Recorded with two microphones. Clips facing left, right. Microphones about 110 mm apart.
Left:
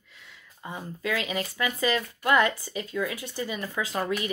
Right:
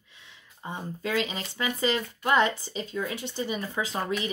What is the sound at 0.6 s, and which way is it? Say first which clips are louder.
Speech: even; 25° right (ahead or behind).